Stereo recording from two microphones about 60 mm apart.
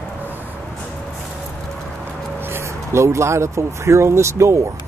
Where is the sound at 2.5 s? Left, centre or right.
Right.